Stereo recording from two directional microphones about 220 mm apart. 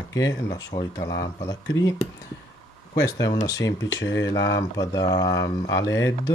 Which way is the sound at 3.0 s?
15° left (ahead or behind).